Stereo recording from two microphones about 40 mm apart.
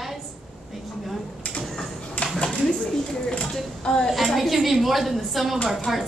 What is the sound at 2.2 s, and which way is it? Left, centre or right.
Speech, left.